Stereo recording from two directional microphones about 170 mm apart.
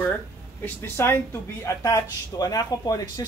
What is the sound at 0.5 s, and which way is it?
Speech, 15° left (ahead or behind).